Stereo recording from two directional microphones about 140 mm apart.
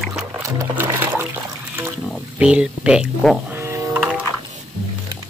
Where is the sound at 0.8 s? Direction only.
15° right (ahead or behind).